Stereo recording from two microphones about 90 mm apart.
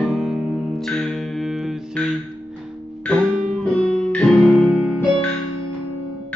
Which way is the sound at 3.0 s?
10° left (ahead or behind).